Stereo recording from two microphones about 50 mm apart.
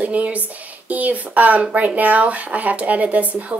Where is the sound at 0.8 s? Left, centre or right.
Right.